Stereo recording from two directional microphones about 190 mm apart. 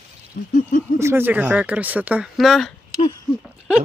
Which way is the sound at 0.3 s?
45° left (ahead or behind).